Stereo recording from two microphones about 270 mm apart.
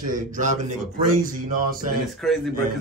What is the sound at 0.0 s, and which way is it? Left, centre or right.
Speech, right.